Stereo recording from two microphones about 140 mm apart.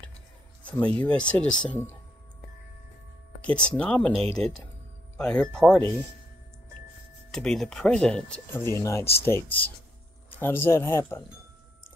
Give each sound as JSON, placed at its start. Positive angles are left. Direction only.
{"t": 0.7, "sound": "speech", "side_deg": 10}
{"t": 3.4, "sound": "speech", "side_deg": 5}
{"t": 7.2, "sound": "speech", "side_deg": 5}
{"t": 8.5, "sound": "speech", "side_deg": 20}